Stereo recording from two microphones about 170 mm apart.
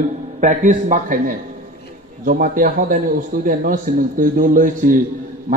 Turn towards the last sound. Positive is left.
turn(degrees=-55)  # may be behind; listen again after turning